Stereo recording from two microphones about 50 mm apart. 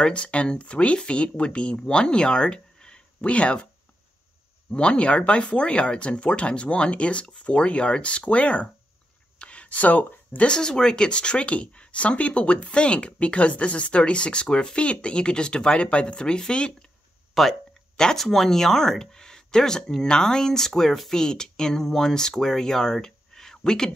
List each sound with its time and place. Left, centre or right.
0.0 s speech: left
4.6 s speech: left
9.4 s a sound: left
10.5 s speech: centre
17.3 s speech: centre